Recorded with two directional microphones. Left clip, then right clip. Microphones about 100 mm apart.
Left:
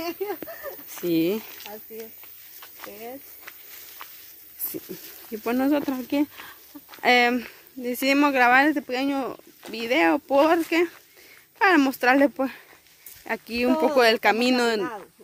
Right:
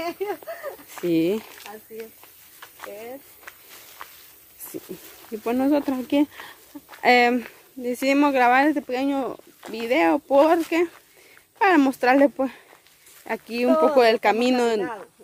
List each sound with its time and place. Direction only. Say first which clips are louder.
0.3 s speech: right 2 dB; centre (ahead or behind)
0.8 s a sound: right 2 dB; 20° right (ahead or behind)
1.2 s speech: right 2 dB; 5° right (ahead or behind)
4.9 s speech: right 1 dB; centre (ahead or behind)
5.7 s speech: right 2 dB; 20° right (ahead or behind)
12.3 s speech: right 2 dB; centre (ahead or behind)